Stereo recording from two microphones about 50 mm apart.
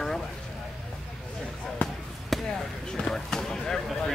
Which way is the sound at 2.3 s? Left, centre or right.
Centre.